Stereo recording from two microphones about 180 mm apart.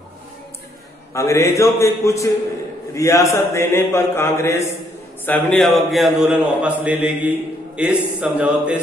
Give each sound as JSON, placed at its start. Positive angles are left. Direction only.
{"t": 1.1, "sound": "a man's voice", "side_deg": 15}